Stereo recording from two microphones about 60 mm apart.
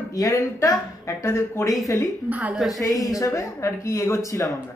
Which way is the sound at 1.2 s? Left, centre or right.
Left.